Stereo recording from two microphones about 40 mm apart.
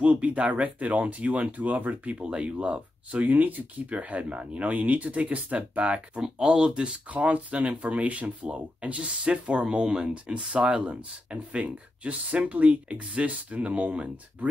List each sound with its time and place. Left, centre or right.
0.0 s speech: right
2.2 s speech: right
3.9 s speech: right
6.2 s speech: right